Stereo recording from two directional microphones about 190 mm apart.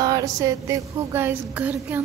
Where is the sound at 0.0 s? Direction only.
20° right (ahead or behind).